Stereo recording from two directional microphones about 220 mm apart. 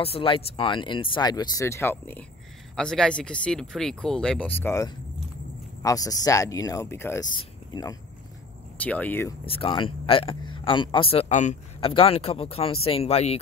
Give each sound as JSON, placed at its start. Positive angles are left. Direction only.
{"t": 0.0, "sound": "speech", "side_deg": 25}
{"t": 8.7, "sound": "speech", "side_deg": 5}
{"t": 9.5, "sound": "speech", "side_deg": 25}